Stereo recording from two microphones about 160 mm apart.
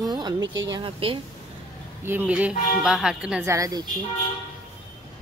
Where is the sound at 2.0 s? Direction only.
10° right (ahead or behind).